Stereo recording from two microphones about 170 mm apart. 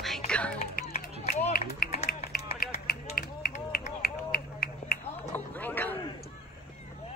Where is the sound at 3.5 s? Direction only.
50° left (ahead or behind).